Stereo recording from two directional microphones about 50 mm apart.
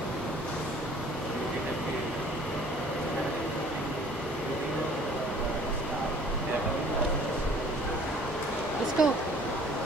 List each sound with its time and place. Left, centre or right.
9.0 s speech: centre